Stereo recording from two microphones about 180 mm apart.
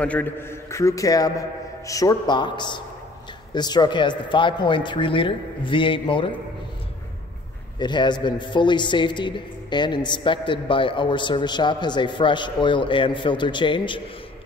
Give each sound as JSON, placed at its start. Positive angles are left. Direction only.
{"t": 0.0, "sound": "a man's voice", "side_deg": 10}
{"t": 7.8, "sound": "a man's voice", "side_deg": 25}